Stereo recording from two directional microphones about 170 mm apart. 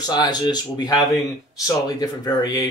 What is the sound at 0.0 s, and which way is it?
Speech, 25° left (ahead or behind).